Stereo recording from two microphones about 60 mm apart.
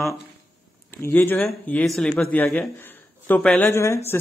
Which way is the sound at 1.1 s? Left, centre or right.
Left.